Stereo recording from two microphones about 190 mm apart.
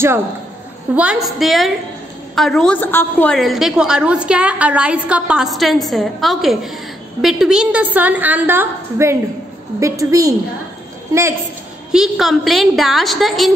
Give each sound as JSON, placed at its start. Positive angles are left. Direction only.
{"t": 0.9, "sound": "a woman's voice", "side_deg": -5}
{"t": 11.9, "sound": "a woman's voice", "side_deg": 0}